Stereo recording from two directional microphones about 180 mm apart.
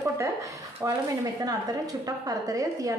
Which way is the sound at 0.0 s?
15° right (ahead or behind).